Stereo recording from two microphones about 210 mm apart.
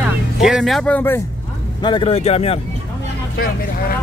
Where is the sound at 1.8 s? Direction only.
25° left (ahead or behind).